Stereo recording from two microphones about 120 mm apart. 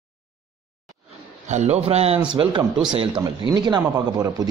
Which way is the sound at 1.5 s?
65° right (ahead or behind).